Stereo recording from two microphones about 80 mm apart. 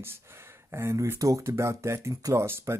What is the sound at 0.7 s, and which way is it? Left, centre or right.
Speech, right.